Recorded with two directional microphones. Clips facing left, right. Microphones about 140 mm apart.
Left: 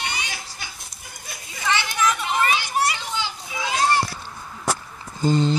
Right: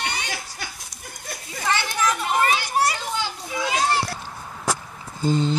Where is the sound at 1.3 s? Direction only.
45° right (ahead or behind).